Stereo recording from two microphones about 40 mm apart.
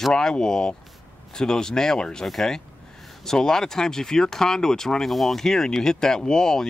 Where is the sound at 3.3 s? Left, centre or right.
Centre.